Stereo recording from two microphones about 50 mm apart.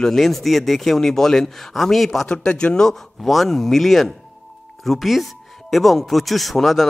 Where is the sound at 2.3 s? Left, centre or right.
Centre.